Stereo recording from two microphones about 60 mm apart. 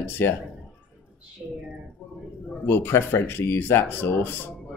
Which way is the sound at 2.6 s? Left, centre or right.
Left.